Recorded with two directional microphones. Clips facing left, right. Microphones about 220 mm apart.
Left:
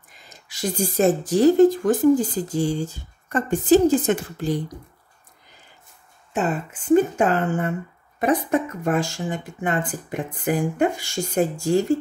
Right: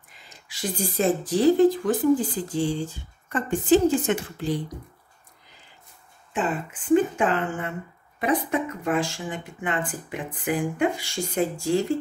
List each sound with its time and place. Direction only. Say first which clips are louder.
0.5 s speech: left 4 dB; 45° left (ahead or behind)
6.3 s speech: left 3 dB; 40° left (ahead or behind)